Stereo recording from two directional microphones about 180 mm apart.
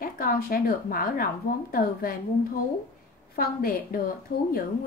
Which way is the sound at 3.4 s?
55° left (ahead or behind).